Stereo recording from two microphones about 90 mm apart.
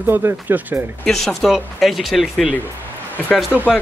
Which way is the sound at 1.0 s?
5° left (ahead or behind).